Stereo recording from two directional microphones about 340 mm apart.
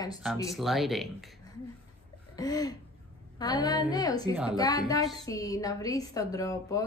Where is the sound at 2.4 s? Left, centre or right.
Centre.